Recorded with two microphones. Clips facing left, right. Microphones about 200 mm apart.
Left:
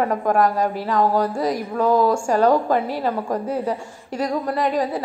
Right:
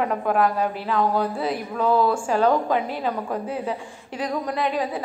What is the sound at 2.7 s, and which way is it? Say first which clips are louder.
Speech: left 3 dB; 45° left (ahead or behind).